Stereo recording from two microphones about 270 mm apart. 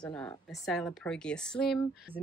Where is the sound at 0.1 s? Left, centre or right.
Centre.